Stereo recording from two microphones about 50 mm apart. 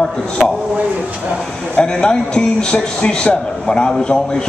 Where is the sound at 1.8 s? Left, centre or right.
Centre.